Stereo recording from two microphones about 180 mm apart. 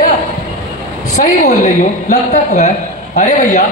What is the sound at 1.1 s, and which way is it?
A man's voice, 40° left (ahead or behind).